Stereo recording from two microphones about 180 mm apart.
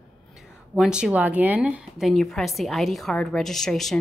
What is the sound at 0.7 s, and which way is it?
A woman's voice, 5° right (ahead or behind).